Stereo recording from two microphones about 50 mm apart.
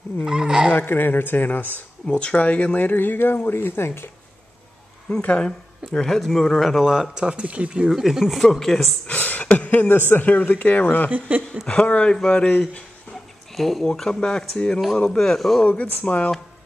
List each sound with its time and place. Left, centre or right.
0.2 s fowl: centre
0.7 s speech: left
2.0 s speech: left
5.4 s speech: centre
6.8 s speech: centre
7.4 s speech: right
7.8 s speech: centre
9.0 s speech: left
11.1 s speech: right
11.6 s speech: left
13.6 s speech: centre
13.9 s speech: centre
15.6 s speech: left